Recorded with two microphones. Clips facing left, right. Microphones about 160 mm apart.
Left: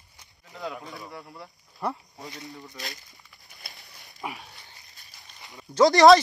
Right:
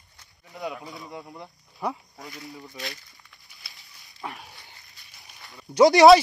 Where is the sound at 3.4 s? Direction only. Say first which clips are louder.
Left 8 dB; 40° left (ahead or behind).